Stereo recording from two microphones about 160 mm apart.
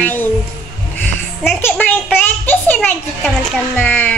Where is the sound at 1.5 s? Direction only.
10° left (ahead or behind).